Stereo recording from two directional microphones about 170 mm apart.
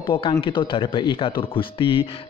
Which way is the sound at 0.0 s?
30° left (ahead or behind).